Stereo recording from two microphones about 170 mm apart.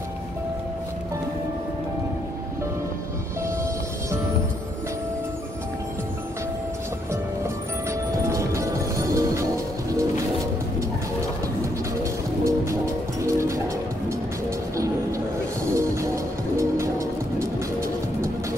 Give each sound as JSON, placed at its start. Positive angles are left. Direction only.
{"t": 8.3, "sound": "music", "side_deg": -15}
{"t": 12.0, "sound": "music", "side_deg": -15}
{"t": 14.8, "sound": "music", "side_deg": -20}